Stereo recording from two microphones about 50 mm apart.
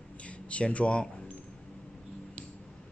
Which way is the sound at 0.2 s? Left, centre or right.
Left.